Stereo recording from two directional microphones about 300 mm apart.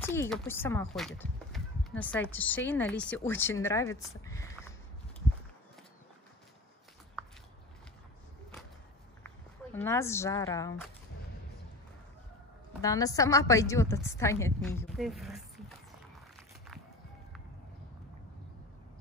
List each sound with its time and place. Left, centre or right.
0.0 s speech: centre
9.8 s speech: centre
12.8 s speech: centre